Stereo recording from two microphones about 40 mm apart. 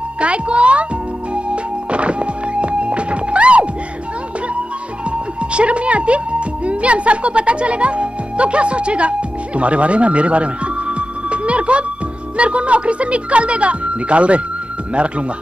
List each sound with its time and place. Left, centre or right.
0.2 s speech: right
1.3 s music: right
5.1 s speech: right
9.6 s music: right
12.4 s speech: right